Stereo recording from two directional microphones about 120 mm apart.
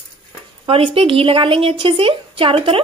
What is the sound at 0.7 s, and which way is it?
A woman's voice, 50° right (ahead or behind).